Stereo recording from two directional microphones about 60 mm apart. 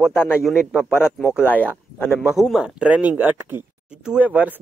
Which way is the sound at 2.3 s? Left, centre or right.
Centre.